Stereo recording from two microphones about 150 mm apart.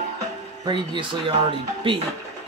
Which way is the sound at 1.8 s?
35° right (ahead or behind).